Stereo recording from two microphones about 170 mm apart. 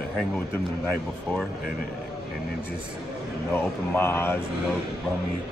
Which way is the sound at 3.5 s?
15° left (ahead or behind).